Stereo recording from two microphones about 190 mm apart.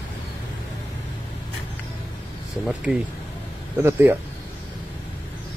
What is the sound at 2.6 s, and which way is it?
Speech, 5° right (ahead or behind).